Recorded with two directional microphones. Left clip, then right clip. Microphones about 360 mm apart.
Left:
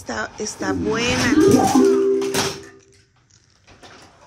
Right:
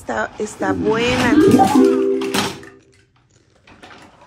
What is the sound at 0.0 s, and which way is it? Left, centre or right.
Speech, centre.